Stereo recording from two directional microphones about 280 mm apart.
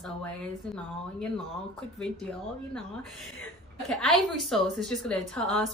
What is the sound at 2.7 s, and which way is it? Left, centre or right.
A woman's voice, centre.